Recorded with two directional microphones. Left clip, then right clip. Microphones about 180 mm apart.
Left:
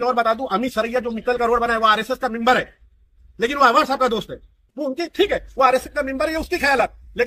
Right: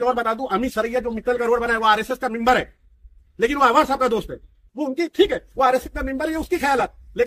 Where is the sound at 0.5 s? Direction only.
15° right (ahead or behind).